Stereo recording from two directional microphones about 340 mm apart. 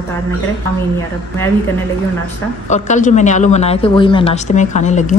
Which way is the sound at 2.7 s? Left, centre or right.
Left.